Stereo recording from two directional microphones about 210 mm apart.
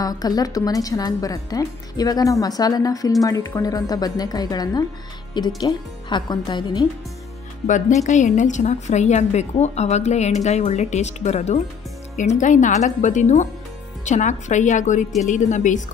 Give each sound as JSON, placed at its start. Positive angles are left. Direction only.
{"t": 0.0, "sound": "a woman's voice", "side_deg": 20}
{"t": 7.6, "sound": "a woman's voice", "side_deg": 35}